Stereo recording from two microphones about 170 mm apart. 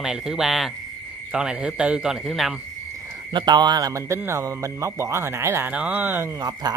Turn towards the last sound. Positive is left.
turn(degrees=-25)  # may be behind; listen again after turning